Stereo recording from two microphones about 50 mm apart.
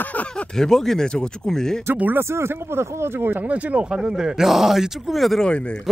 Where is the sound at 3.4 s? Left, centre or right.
Right.